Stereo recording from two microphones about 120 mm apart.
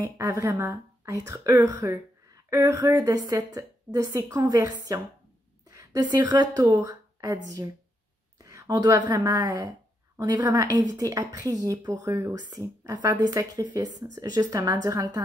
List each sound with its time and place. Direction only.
0.0 s a woman's voice: 25° right (ahead or behind)